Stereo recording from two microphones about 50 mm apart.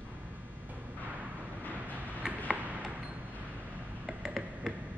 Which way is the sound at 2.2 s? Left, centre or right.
Right.